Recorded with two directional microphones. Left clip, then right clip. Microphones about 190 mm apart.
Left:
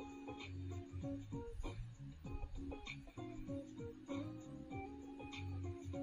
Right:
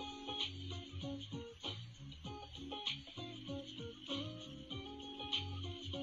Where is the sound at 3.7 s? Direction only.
35° left (ahead or behind).